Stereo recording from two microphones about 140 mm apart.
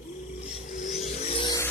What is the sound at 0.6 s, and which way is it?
Vehicle, 60° left (ahead or behind).